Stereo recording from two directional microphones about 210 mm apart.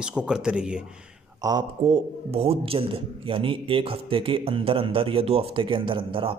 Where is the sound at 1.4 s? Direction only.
15° right (ahead or behind).